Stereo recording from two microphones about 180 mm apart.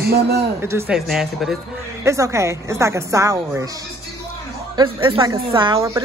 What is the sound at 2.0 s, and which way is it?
A woman's voice, 15° right (ahead or behind).